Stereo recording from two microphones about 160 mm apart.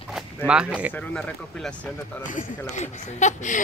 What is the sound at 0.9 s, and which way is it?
Speech, 5° left (ahead or behind).